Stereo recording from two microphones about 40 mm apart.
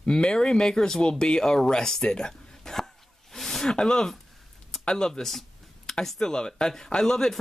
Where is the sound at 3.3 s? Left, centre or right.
Centre.